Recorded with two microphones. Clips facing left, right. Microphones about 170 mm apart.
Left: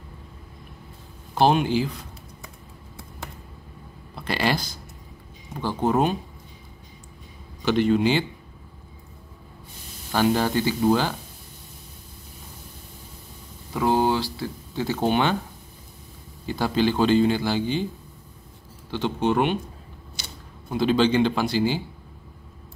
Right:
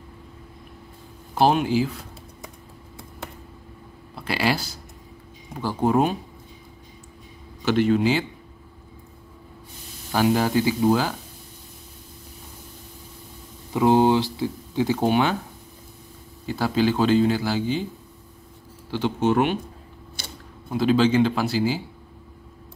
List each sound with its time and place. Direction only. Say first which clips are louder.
1.3 s a man's voice: even; 5° right (ahead or behind)
4.1 s speech: right 1 dB; 5° right (ahead or behind)
7.6 s a man's voice: even; 5° right (ahead or behind)
10.1 s a man's voice: right 1 dB; 5° right (ahead or behind)
13.7 s speech: right 4 dB; 20° right (ahead or behind)
16.4 s a man's voice: right 1 dB; centre (ahead or behind)
18.9 s a man's voice: right 2 dB; 10° right (ahead or behind)
20.7 s a man's voice: right 1 dB; 5° right (ahead or behind)